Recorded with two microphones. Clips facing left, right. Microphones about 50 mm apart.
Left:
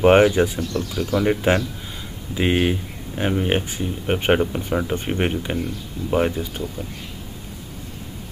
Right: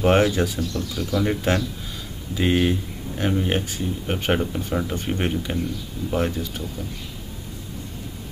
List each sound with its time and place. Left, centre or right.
0.0 s speech: left